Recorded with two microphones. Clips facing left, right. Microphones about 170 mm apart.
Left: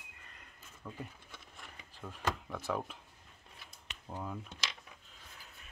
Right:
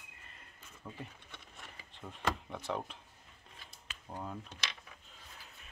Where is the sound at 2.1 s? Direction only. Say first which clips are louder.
Even; centre (ahead or behind).